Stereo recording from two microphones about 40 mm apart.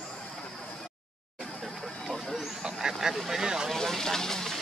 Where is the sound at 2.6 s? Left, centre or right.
Centre.